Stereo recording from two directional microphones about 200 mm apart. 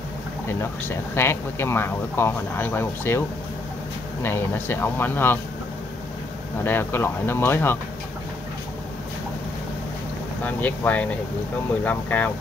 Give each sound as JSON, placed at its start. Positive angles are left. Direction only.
{"t": 0.5, "sound": "speech", "side_deg": 10}
{"t": 6.6, "sound": "speech", "side_deg": 10}
{"t": 10.4, "sound": "speech", "side_deg": 10}